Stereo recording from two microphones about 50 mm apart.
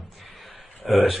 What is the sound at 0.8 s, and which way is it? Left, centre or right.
Speech, centre.